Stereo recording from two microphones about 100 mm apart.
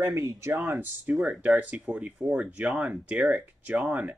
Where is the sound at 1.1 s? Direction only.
5° right (ahead or behind).